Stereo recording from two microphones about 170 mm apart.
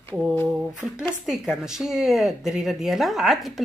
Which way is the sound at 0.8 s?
Centre (ahead or behind).